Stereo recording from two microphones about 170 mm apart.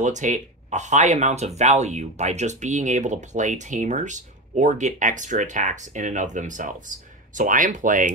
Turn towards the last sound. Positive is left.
turn(degrees=-50)  # may be behind; listen again after turning